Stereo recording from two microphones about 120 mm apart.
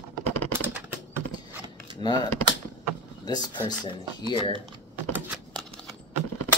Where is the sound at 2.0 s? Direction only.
35° left (ahead or behind).